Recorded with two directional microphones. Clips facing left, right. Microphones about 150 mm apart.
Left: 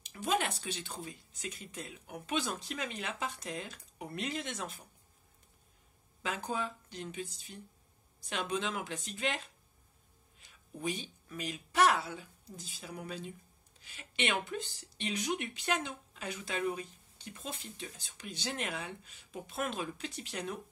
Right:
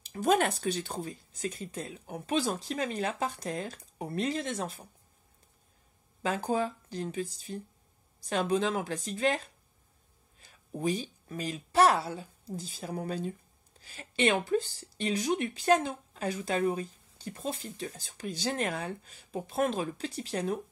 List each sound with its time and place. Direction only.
0.0 s speech: 40° right (ahead or behind)
6.2 s speech: 35° right (ahead or behind)